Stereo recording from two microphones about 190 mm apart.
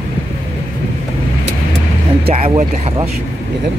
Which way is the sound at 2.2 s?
30° right (ahead or behind).